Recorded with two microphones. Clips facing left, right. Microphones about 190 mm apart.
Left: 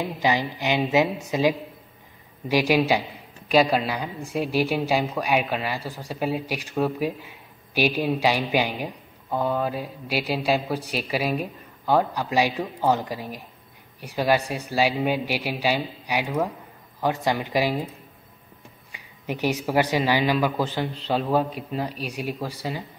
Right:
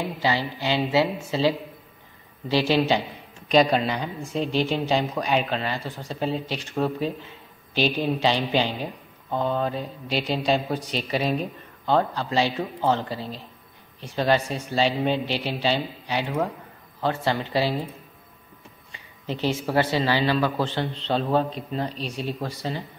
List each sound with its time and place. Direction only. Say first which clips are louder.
0.2 s a man's voice: left 2 dB; 15° left (ahead or behind)
18.9 s speech: left 1 dB; 15° left (ahead or behind)